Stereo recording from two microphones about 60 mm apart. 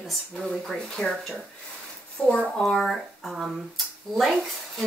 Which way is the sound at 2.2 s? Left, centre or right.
Centre.